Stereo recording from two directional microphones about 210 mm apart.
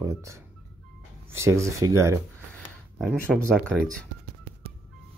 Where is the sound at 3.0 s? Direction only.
Centre (ahead or behind).